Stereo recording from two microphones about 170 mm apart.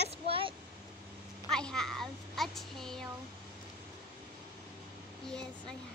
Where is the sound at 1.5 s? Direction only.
5° left (ahead or behind).